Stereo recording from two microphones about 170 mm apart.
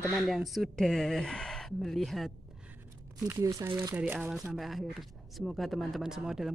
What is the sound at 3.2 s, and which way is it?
Speech, 20° right (ahead or behind).